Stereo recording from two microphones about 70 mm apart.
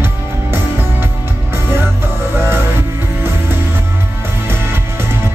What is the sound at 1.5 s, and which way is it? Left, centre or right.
Music, right.